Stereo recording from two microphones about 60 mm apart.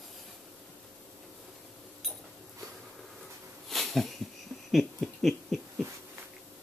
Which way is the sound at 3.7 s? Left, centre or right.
Centre.